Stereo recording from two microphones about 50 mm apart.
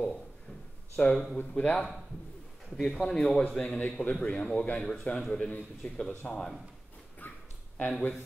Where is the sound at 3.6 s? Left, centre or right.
Left.